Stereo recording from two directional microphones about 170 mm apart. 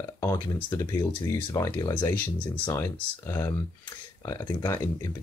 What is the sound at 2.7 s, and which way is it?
Speech, 15° left (ahead or behind).